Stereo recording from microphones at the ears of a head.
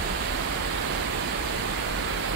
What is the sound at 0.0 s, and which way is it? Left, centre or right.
Pink noise, right.